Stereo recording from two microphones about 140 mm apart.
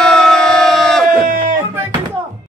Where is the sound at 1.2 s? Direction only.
75° right (ahead or behind).